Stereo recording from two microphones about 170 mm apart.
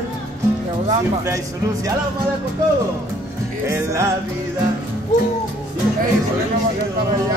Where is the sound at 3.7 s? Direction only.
15° right (ahead or behind).